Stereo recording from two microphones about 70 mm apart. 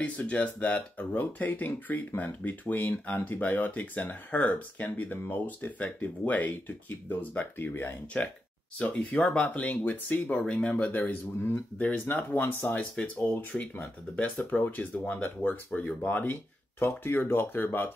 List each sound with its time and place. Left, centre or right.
0.0 s speech: centre
8.2 s speech: centre